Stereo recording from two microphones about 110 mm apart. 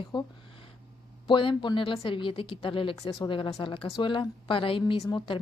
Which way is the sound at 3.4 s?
35° left (ahead or behind).